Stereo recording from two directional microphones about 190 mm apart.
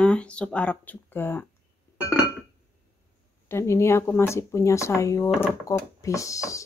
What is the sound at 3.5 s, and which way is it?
Speech, 15° left (ahead or behind).